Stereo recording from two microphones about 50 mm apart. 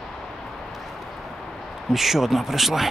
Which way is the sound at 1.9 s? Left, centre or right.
Centre.